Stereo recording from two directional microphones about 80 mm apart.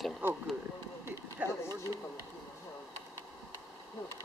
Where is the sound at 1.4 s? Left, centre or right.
Centre.